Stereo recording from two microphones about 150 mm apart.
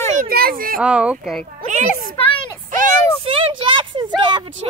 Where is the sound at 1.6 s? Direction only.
55° right (ahead or behind).